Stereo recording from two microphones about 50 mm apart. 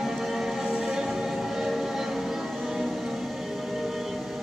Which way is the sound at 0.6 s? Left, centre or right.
Centre.